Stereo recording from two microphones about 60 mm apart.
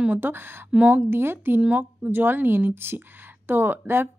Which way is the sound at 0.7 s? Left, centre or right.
Right.